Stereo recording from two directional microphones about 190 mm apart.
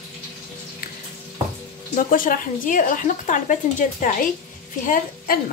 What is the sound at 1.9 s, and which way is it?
Speech, 45° left (ahead or behind).